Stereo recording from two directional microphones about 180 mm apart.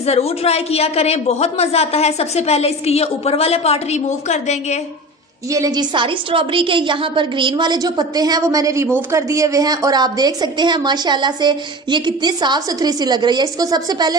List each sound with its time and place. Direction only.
0.0 s a woman's voice: 35° left (ahead or behind)
5.5 s a woman's voice: 20° right (ahead or behind)